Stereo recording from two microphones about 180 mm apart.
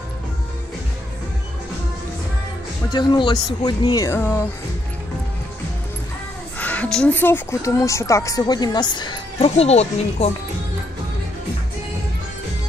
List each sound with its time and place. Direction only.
2.9 s speech: 25° left (ahead or behind)
6.6 s speech: 5° left (ahead or behind); by 10.3 s 35° left (ahead or behind)